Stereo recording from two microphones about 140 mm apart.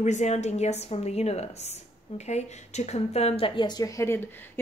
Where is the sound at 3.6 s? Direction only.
30° left (ahead or behind).